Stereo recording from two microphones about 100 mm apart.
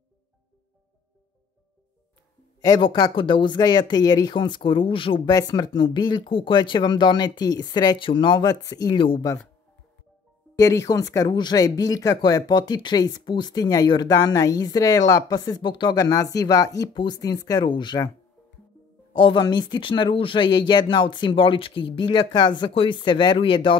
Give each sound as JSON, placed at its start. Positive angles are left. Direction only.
{"t": 2.8, "sound": "speech", "side_deg": 55}
{"t": 5.5, "sound": "speech", "side_deg": 45}
{"t": 8.6, "sound": "speech", "side_deg": 35}
{"t": 8.9, "sound": "speech", "side_deg": 60}
{"t": 10.6, "sound": "speech", "side_deg": 35}
{"t": 16.0, "sound": "speech", "side_deg": 35}
{"t": 19.1, "sound": "speech", "side_deg": 55}